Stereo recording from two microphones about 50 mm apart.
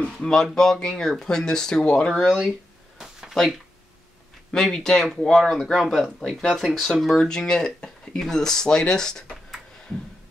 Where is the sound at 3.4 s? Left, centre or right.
Centre.